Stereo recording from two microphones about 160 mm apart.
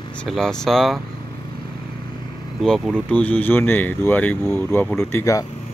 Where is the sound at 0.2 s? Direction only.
5° left (ahead or behind).